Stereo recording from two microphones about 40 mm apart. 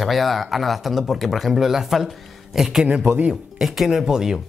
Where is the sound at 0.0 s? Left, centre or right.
Centre.